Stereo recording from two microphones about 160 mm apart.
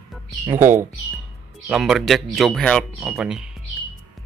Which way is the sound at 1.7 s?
Centre (ahead or behind).